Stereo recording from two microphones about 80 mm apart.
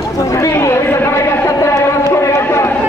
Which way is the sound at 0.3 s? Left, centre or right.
Left.